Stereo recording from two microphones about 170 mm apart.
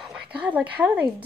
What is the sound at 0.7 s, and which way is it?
Speech, 5° right (ahead or behind).